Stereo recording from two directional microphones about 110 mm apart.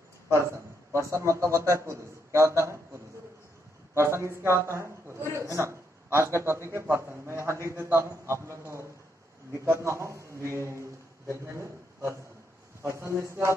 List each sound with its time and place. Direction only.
0.9 s a man's voice: 25° right (ahead or behind)